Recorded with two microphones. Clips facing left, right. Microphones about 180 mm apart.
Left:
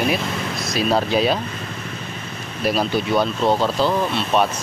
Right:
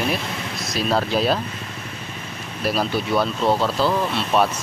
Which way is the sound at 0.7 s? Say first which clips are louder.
Left 2 dB; centre (ahead or behind).